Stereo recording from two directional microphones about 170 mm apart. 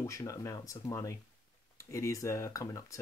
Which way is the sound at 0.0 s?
20° left (ahead or behind).